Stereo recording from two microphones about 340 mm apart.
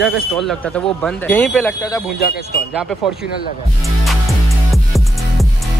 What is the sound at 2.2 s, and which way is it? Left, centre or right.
Speech, left.